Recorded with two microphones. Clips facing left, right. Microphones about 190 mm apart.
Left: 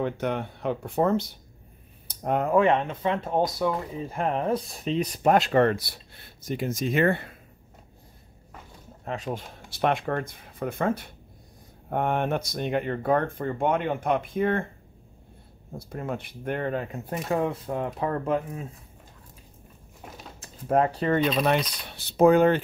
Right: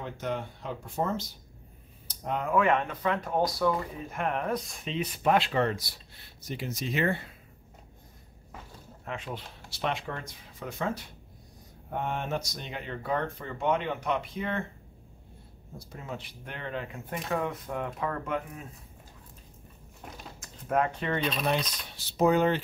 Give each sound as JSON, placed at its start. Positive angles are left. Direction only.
{"t": 0.0, "sound": "speech", "side_deg": 60}
{"t": 2.0, "sound": "speech", "side_deg": 50}
{"t": 2.5, "sound": "speech", "side_deg": 30}
{"t": 9.0, "sound": "speech", "side_deg": 40}
{"t": 15.9, "sound": "speech", "side_deg": 55}
{"t": 20.3, "sound": "speech", "side_deg": 30}
{"t": 21.5, "sound": "speech", "side_deg": 65}